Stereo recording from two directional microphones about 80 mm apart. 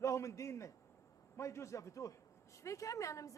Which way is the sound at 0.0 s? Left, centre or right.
Left.